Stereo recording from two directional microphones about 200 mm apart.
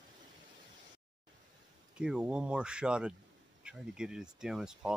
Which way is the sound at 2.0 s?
5° right (ahead or behind).